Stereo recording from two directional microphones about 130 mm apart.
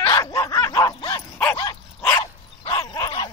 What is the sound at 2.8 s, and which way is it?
Dog, 25° left (ahead or behind).